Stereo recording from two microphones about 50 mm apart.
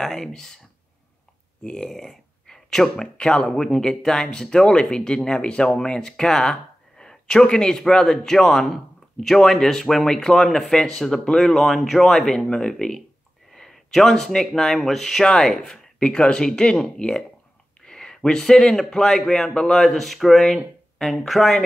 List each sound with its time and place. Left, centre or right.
0.0 s speech: centre
1.6 s speech: centre
16.0 s speech: centre